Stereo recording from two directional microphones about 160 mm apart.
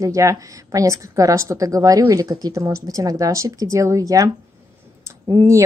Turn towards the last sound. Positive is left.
turn(degrees=-20)  # may be behind; listen again after turning